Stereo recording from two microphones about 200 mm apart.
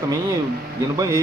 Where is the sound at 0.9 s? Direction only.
15° right (ahead or behind).